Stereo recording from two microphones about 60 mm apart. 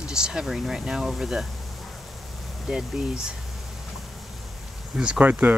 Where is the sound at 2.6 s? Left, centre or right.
Centre.